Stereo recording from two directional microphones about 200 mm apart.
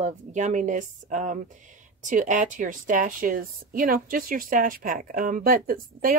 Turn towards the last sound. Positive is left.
turn(degrees=-45)  # may be behind; listen again after turning